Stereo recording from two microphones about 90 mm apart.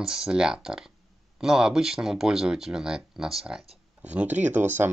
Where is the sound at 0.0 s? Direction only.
5° right (ahead or behind).